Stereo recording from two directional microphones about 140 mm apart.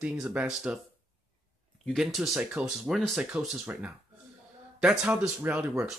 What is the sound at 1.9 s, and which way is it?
Speech, centre (ahead or behind).